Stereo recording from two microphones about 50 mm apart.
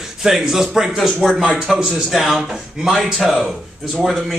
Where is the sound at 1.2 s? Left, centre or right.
Centre.